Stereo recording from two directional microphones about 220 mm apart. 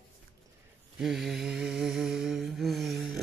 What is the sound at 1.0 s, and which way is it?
Mantra, centre (ahead or behind).